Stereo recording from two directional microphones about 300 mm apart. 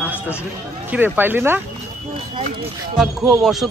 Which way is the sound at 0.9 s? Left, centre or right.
Centre.